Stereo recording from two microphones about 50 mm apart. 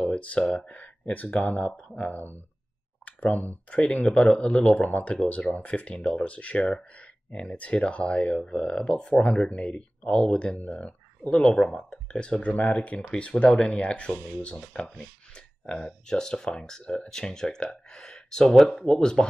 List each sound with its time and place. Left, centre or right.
0.1 s speech: left
3.1 s clicking: left
3.7 s speech: left
12.4 s speech: left
17.2 s speech: centre